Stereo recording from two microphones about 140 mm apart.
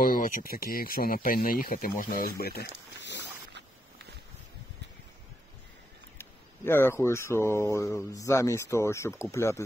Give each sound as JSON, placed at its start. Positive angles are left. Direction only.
{"t": 0.0, "sound": "speech", "side_deg": 90}
{"t": 6.1, "sound": "speech", "side_deg": 15}